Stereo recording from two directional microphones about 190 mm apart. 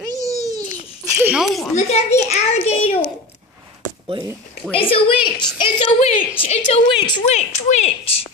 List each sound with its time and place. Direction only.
0.0 s babbling: 20° right (ahead or behind)
1.2 s speech: 5° right (ahead or behind)
1.8 s a woman's voice: 35° left (ahead or behind)
4.7 s a woman's voice: 30° left (ahead or behind)
5.9 s a woman's voice: 35° left (ahead or behind)